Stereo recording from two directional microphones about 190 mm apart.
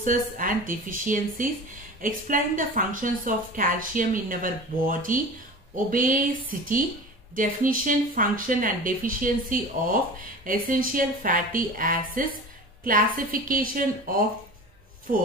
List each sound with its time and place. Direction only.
0.0 s a woman's voice: 45° right (ahead or behind)